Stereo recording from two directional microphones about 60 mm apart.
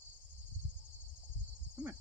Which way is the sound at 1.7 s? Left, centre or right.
Right.